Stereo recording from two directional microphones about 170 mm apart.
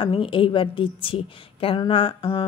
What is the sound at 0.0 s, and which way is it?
A woman's voice, 30° left (ahead or behind).